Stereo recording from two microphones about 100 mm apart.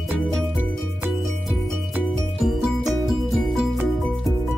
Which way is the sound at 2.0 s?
Centre (ahead or behind).